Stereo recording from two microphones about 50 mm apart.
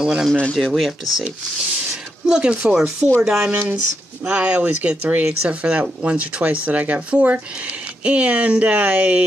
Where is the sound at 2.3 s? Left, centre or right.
Centre.